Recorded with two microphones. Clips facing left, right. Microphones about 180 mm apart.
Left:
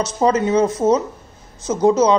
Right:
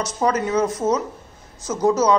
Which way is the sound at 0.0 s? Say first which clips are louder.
Left 4 dB; 25° left (ahead or behind).